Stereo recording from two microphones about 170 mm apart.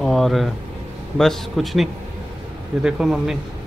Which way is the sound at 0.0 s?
Centre (ahead or behind).